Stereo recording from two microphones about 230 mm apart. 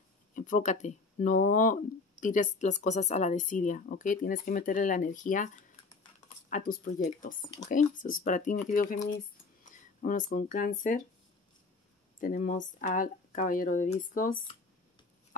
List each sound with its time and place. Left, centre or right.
0.3 s speech: left
6.5 s speech: left
9.7 s speech: left
12.2 s speech: left